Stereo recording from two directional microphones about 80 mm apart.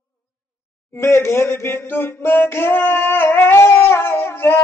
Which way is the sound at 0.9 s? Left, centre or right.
Left.